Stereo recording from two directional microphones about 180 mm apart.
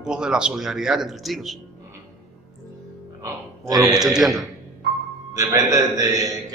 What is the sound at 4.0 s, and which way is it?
Speech, centre (ahead or behind).